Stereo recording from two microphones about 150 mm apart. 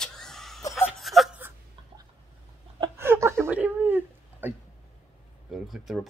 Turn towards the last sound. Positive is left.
turn(degrees=0)  # may be behind; listen again after turning